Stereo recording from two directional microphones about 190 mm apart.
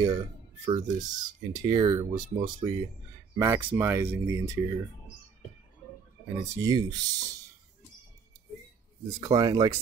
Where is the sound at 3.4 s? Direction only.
15° right (ahead or behind).